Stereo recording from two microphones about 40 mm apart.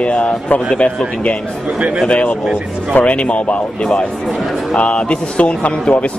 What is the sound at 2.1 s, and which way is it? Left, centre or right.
A man's voice, left.